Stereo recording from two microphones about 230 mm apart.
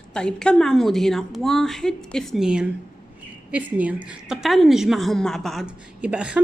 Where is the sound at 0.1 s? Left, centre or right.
Centre.